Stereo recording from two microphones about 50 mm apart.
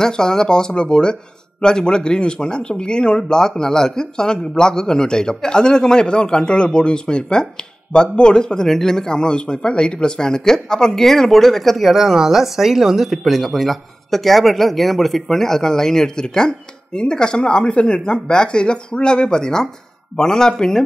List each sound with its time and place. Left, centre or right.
0.0 s a man's voice: centre